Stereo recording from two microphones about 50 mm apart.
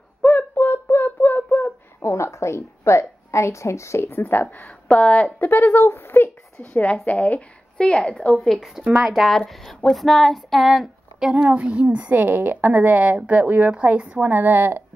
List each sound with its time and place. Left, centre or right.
0.2 s a sound: left
0.6 s humming: left
1.2 s a sound: left
2.0 s a woman's voice: left
4.2 s speech: left
4.9 s a woman's voice: centre
5.4 s speech: left
6.9 s a woman's voice: left
8.5 s speech: centre
9.1 s speech: centre
11.4 s speech: right